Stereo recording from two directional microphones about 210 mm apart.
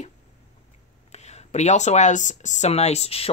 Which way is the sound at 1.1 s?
30° left (ahead or behind).